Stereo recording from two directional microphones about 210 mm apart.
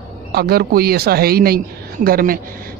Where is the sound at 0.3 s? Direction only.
45° right (ahead or behind).